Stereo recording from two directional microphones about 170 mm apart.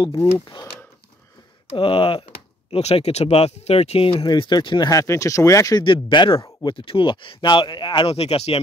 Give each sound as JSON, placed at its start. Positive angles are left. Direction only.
{"t": 0.0, "sound": "speech", "side_deg": 25}
{"t": 1.8, "sound": "speech", "side_deg": 30}